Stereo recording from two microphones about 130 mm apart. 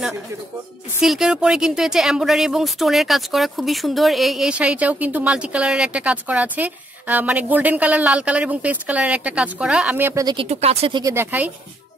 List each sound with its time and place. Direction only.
1.0 s speech: 5° right (ahead or behind)
10.2 s speech: 45° right (ahead or behind)
10.9 s a woman's voice: 30° right (ahead or behind)
11.1 s speech: 10° right (ahead or behind)